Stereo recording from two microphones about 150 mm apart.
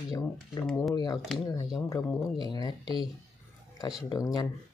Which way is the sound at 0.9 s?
25° left (ahead or behind).